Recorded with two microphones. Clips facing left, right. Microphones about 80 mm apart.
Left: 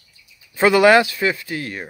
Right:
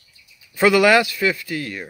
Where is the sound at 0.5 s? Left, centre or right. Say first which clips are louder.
Left 2 dB; left.